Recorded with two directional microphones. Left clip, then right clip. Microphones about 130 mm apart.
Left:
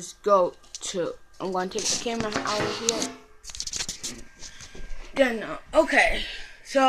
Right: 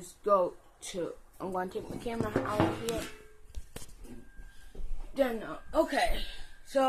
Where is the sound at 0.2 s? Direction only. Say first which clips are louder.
Left 6 dB; 15° left (ahead or behind).